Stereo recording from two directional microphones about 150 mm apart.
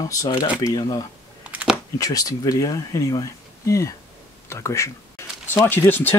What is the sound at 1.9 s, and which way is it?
Speech, 25° left (ahead or behind).